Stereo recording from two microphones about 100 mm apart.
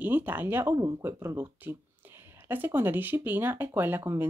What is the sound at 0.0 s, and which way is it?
Speech, 20° right (ahead or behind).